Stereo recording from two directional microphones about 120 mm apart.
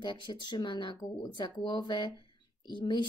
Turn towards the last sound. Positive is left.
turn(degrees=40)  # may be behind; listen again after turning